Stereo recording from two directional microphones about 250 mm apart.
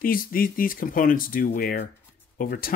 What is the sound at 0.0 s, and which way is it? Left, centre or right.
Speech, left.